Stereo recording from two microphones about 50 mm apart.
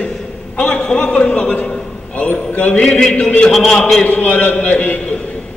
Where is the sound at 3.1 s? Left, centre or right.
Left.